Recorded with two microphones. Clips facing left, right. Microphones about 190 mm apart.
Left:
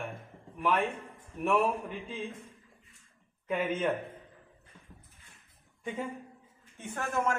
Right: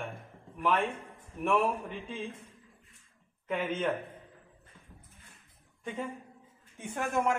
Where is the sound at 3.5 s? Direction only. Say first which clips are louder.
Left 1 dB; 10° left (ahead or behind).